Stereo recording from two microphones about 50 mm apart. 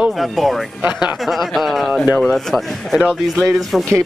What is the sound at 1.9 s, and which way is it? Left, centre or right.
Speech, right.